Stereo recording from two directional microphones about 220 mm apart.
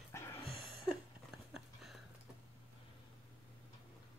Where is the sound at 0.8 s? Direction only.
Centre (ahead or behind).